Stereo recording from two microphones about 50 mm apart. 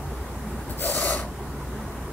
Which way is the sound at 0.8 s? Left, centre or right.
Left.